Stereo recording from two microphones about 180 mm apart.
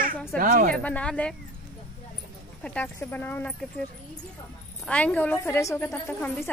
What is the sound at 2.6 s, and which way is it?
Speech, 10° left (ahead or behind).